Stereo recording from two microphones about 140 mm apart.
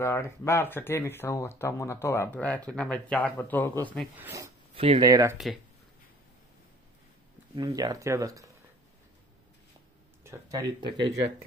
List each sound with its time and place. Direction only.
0.0 s speech: 20° left (ahead or behind)
4.2 s speech: 20° right (ahead or behind)
4.7 s speech: 40° right (ahead or behind)
5.0 s speech: 30° right (ahead or behind)
7.5 s speech: 30° right (ahead or behind)
10.2 s speech: 25° right (ahead or behind)